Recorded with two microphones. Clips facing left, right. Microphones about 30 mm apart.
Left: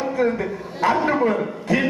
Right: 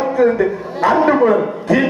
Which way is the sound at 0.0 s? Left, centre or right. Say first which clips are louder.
Right 7 dB; centre.